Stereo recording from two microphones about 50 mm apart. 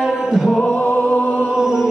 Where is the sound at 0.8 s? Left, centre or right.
Left.